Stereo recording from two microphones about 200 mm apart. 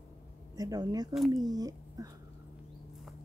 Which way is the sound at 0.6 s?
20° right (ahead or behind).